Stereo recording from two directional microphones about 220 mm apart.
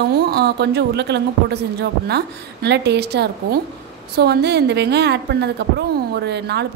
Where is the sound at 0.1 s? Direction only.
45° right (ahead or behind).